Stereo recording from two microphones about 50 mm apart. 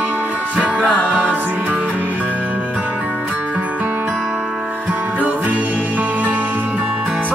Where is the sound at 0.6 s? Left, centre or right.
Left.